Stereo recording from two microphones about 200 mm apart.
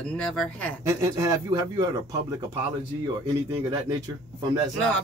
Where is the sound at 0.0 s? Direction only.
5° left (ahead or behind).